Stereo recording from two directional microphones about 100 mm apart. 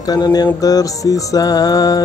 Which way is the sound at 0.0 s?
40° left (ahead or behind).